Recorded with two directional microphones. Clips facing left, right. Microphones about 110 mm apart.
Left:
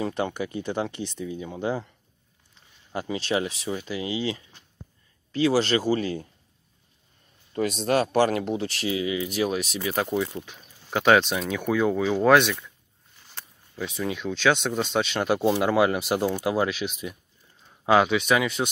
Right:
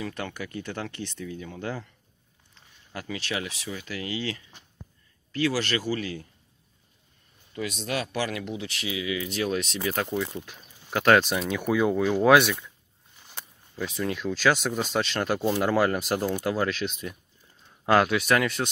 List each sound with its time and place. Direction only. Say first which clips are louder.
0.0 s speech: left 6 dB; 25° left (ahead or behind)
2.9 s speech: left 6 dB; 25° left (ahead or behind)
7.5 s speech: left 7 dB; 40° left (ahead or behind)
9.3 s speech: left 2 dB; 10° left (ahead or behind)
10.4 s speech: left 1 dB; centre (ahead or behind)
13.7 s speech: even; 5° left (ahead or behind)